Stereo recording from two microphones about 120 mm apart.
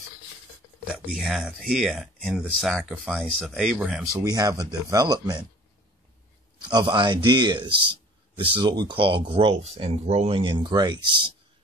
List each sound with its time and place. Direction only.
0.9 s speech: 5° right (ahead or behind)
4.0 s speech: 25° right (ahead or behind)
6.6 s speech: 40° right (ahead or behind)